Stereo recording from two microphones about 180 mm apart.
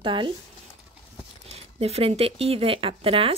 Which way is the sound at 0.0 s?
25° right (ahead or behind).